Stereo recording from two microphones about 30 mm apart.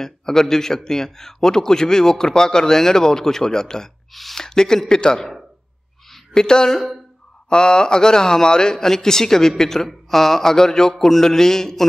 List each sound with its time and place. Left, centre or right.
0.0 s a man's voice: centre
4.1 s speech: centre
4.4 s speech: left
6.3 s a man's voice: left